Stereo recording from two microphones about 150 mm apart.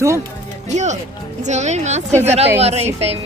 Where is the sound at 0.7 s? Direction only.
50° right (ahead or behind).